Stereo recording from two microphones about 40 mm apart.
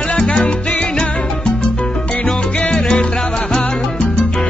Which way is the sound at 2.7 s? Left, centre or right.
Centre.